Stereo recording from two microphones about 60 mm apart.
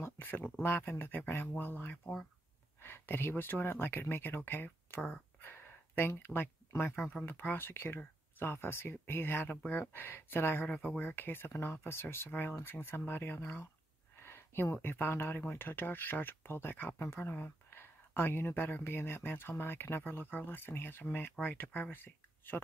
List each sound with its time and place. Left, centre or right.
0.0 s speech: left
10.7 s speech: left